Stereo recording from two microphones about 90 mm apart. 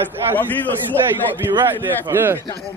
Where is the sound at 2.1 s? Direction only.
25° right (ahead or behind).